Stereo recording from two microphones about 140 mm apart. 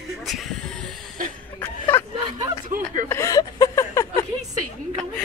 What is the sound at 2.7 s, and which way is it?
Chuckle, 65° right (ahead or behind).